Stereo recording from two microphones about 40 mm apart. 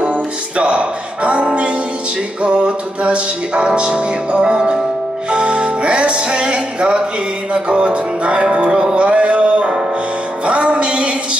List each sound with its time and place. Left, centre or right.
0.0 s music: right